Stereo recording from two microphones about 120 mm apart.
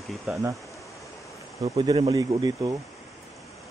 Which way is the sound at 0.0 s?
Centre (ahead or behind).